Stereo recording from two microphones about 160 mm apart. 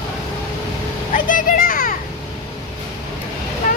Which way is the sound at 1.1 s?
55° left (ahead or behind).